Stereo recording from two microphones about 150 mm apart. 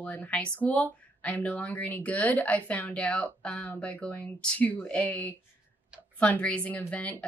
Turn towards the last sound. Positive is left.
turn(degrees=10)  # may be behind; listen again after turning